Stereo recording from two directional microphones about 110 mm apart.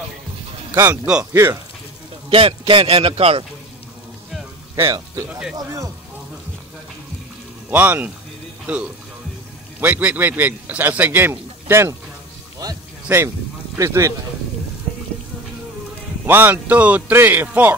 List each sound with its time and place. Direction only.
0.7 s speech: 15° right (ahead or behind)
2.2 s a man's voice: 60° right (ahead or behind)
4.7 s speech: 30° right (ahead or behind)
5.3 s a man's voice: 15° right (ahead or behind)
5.6 s speech: 30° right (ahead or behind)
7.7 s a man's voice: 15° right (ahead or behind)
9.8 s a man's voice: 15° right (ahead or behind)
13.7 s speech: 30° right (ahead or behind)
16.3 s a man's voice: 20° right (ahead or behind)